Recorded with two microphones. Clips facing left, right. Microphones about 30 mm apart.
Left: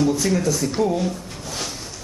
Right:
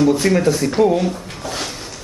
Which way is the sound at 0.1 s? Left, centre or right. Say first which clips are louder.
Right 5 dB; right.